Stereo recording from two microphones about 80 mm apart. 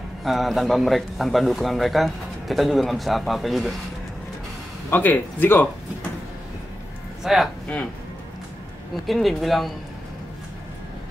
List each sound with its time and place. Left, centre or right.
0.2 s a man's voice: centre
4.8 s speech: left
7.2 s a man's voice: centre
9.0 s a man's voice: centre